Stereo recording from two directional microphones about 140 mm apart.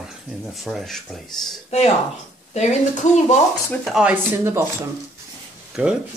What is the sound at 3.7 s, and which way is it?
Speech, 5° left (ahead or behind).